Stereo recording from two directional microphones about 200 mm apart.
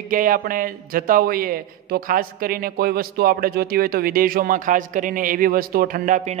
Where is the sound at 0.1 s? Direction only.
45° right (ahead or behind).